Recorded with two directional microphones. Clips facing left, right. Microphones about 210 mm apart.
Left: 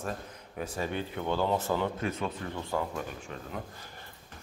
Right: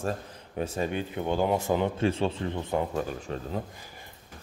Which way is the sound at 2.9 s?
35° right (ahead or behind).